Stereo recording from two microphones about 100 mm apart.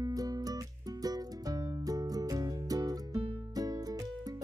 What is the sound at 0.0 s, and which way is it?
Music, 40° right (ahead or behind).